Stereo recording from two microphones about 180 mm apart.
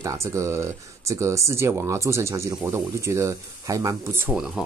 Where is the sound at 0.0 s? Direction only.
15° right (ahead or behind).